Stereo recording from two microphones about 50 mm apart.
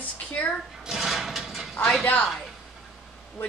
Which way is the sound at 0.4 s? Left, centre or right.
Left.